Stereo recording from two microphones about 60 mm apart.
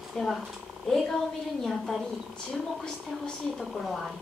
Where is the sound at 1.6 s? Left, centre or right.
Centre.